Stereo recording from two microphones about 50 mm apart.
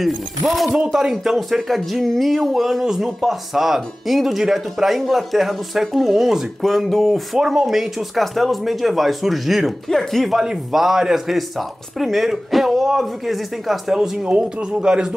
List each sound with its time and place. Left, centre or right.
0.0 s speech: centre
10.4 s speech: centre
14.2 s speech: right